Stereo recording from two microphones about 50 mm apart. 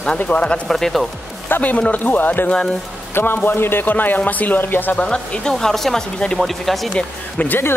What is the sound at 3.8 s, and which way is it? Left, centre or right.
Speech, left.